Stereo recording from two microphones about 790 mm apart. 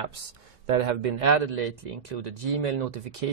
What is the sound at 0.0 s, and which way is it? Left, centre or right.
A man's voice, right.